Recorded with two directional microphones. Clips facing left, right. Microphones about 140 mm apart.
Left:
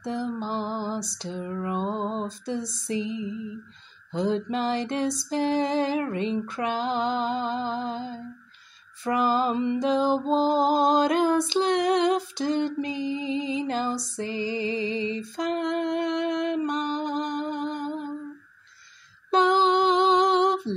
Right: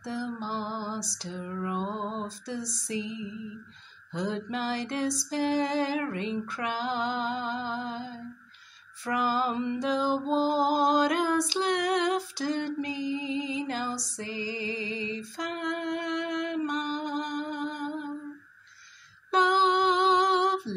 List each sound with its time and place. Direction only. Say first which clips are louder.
0.0 s lullaby: left 4 dB; 20° left (ahead or behind)
4.1 s female singing: left 6 dB; 25° left (ahead or behind)
9.0 s music: left 4 dB; 25° left (ahead or behind)
19.3 s lullaby: left 4 dB; 25° left (ahead or behind)